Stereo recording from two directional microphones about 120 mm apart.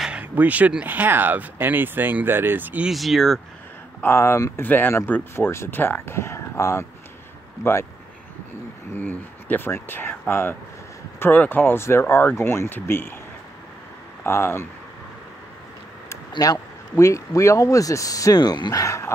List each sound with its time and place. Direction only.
0.0 s speech: 10° right (ahead or behind)
2.9 s speech: centre (ahead or behind)
4.0 s speech: 20° left (ahead or behind)
8.9 s speech: 15° left (ahead or behind)
14.2 s speech: 20° left (ahead or behind)
16.1 s speech: 25° left (ahead or behind)